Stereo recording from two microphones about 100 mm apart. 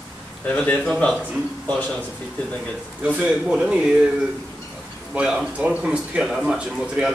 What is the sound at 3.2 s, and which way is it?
Speech, 5° right (ahead or behind).